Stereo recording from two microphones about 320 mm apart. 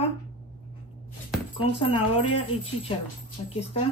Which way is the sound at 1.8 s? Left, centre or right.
Centre.